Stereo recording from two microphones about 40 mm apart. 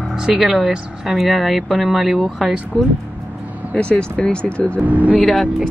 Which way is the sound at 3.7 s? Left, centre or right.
Left.